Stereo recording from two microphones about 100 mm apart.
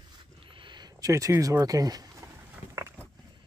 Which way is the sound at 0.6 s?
50° right (ahead or behind).